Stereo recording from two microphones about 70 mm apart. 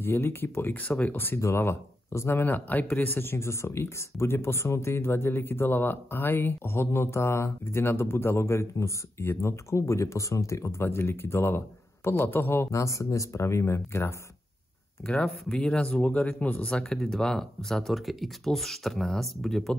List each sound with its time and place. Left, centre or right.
0.0 s speech: left
15.0 s speech: centre